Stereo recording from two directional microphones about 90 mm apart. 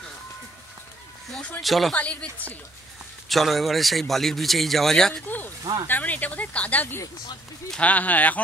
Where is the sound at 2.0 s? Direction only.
15° left (ahead or behind).